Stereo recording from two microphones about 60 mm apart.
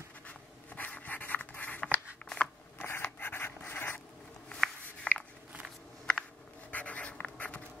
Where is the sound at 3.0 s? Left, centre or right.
Left.